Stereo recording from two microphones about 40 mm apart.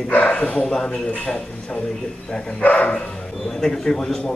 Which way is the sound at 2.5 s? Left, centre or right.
Left.